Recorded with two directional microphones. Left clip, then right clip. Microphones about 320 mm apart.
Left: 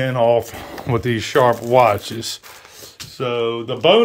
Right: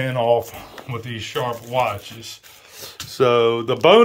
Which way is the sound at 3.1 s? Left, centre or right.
Centre.